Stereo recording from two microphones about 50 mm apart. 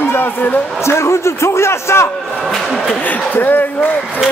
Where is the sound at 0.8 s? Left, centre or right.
Left.